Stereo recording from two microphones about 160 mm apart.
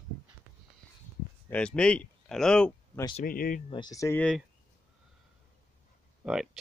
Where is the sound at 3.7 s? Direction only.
25° left (ahead or behind).